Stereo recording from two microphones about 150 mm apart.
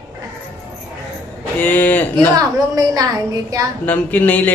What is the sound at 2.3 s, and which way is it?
Speech, 25° right (ahead or behind).